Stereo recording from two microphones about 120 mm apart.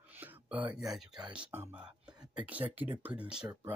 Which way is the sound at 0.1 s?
15° right (ahead or behind).